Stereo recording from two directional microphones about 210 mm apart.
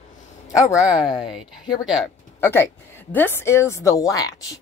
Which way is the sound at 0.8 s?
Centre (ahead or behind).